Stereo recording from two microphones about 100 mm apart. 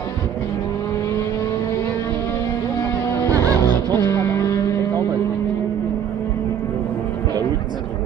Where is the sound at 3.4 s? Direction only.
30° left (ahead or behind).